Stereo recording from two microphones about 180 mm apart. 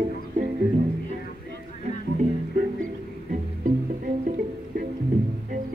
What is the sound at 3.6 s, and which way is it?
Music, 50° right (ahead or behind).